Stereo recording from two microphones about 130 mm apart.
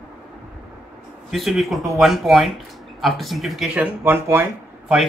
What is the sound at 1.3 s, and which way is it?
Speech, centre (ahead or behind).